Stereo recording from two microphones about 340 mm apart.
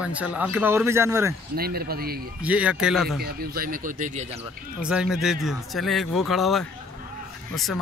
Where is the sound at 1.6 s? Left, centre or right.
Right.